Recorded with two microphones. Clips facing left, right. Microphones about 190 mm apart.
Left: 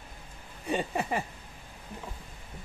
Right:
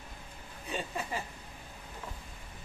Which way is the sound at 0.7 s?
65° left (ahead or behind).